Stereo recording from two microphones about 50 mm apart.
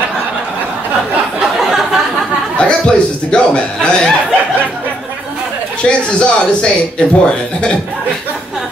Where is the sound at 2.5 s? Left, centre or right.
Centre.